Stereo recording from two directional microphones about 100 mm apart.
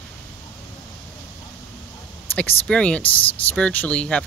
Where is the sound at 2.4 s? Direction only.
10° left (ahead or behind).